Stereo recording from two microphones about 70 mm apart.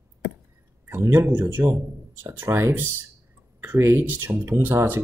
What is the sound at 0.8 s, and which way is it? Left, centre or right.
Speech, right.